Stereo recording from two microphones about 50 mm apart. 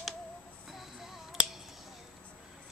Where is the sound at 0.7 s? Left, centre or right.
Centre.